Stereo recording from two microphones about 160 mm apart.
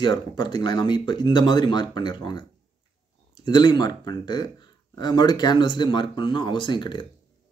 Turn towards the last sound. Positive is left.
turn(degrees=30)  # may be behind; listen again after turning